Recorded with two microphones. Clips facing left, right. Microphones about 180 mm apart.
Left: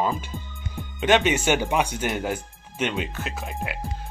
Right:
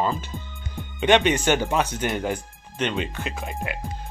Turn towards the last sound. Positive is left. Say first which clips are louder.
# right 1 dB
turn(degrees=0)  # may be behind; listen again after turning